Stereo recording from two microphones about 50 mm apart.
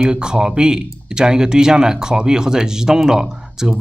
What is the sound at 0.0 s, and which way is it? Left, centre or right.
Speech, centre.